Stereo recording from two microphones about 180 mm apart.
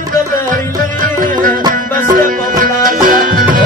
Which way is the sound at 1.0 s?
50° right (ahead or behind).